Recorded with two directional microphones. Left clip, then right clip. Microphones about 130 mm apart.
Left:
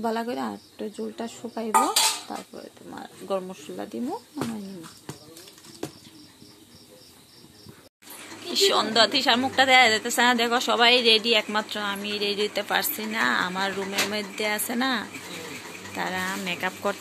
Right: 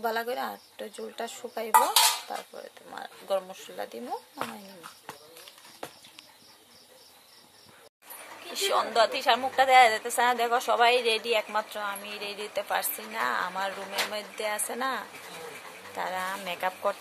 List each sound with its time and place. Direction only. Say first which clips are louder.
0.0 s a woman's voice: left 2 dB; centre (ahead or behind)
0.9 s speech: right 1 dB; 10° right (ahead or behind)
1.6 s dishes: even; centre (ahead or behind)
2.9 s a woman's voice: even; 5° right (ahead or behind)
8.5 s a woman's voice: left 4 dB; 5° right (ahead or behind)
16.4 s speech: left 2 dB; 25° right (ahead or behind)